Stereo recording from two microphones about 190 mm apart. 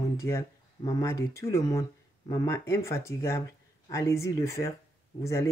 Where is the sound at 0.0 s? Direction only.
15° left (ahead or behind).